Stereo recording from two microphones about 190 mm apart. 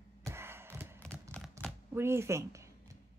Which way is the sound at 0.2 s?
15° right (ahead or behind).